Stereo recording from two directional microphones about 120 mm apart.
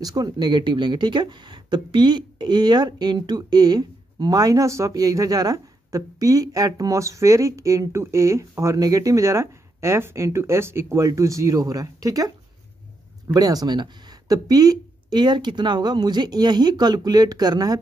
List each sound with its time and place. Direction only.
0.0 s speech: 35° right (ahead or behind)
13.3 s speech: 30° right (ahead or behind)